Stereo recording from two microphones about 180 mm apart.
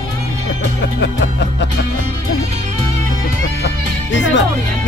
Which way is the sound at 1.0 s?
75° left (ahead or behind).